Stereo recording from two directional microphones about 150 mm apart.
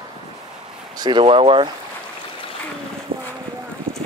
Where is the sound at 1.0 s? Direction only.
30° right (ahead or behind).